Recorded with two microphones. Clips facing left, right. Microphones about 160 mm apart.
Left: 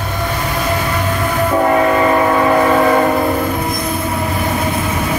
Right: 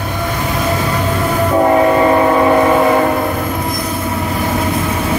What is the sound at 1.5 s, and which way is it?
Train, 20° right (ahead or behind).